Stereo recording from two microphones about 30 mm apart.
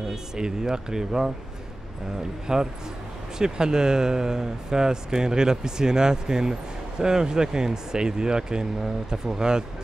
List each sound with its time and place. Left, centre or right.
0.1 s speech: right
2.4 s speech: right